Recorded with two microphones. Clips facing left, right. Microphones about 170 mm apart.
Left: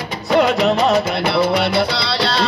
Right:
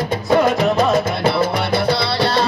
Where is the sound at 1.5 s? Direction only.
75° left (ahead or behind).